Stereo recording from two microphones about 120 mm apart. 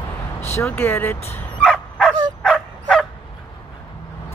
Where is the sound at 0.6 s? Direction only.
20° left (ahead or behind).